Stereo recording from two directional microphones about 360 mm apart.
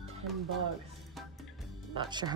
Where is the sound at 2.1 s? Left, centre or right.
Centre.